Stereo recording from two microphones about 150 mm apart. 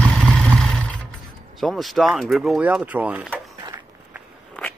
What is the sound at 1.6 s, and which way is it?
Speech, centre (ahead or behind).